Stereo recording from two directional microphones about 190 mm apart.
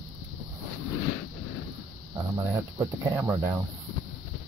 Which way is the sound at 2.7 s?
15° right (ahead or behind).